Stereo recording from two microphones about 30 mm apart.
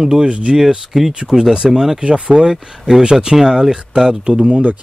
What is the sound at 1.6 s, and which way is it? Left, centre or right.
Speech, centre.